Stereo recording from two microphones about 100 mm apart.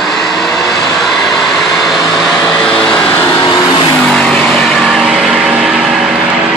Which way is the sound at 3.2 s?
40° left (ahead or behind).